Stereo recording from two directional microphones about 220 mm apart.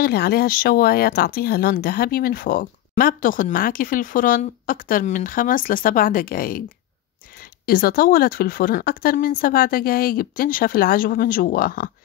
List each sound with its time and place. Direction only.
0.0 s speech: 45° left (ahead or behind)
7.6 s speech: 45° left (ahead or behind)